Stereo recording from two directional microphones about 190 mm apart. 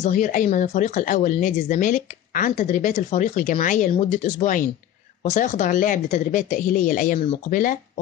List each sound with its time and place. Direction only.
0.0 s speech: 40° left (ahead or behind)